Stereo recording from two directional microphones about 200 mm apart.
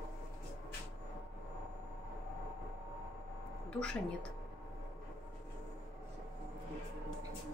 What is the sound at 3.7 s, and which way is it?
Speech, 5° left (ahead or behind).